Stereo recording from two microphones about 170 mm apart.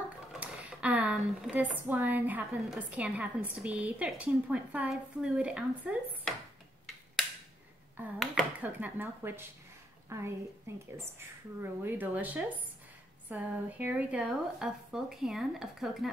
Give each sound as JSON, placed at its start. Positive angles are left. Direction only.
{"t": 0.3, "sound": "speech", "side_deg": -5}
{"t": 8.0, "sound": "a woman's voice", "side_deg": -5}
{"t": 11.8, "sound": "speech", "side_deg": -10}